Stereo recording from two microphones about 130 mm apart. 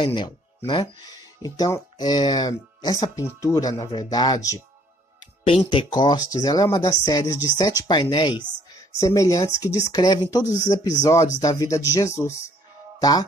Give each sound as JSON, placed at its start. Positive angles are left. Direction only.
{"t": 0.0, "sound": "speech", "side_deg": 35}
{"t": 5.4, "sound": "speech", "side_deg": 45}